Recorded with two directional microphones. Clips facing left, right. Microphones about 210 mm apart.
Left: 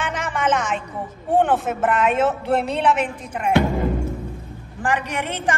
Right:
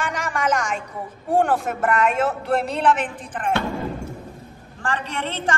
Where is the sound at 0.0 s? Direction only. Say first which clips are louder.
Left 1 dB; centre (ahead or behind).